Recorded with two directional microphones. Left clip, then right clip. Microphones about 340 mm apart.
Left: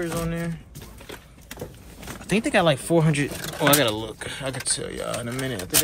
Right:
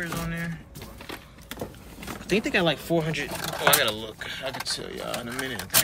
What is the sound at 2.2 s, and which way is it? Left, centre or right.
Speech, centre.